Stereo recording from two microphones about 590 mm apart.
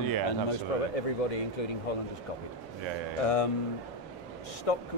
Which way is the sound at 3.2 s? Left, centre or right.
Left.